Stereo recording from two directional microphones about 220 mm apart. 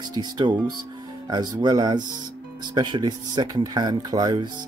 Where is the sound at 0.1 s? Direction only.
20° right (ahead or behind).